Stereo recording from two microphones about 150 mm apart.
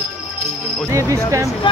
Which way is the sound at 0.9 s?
20° right (ahead or behind).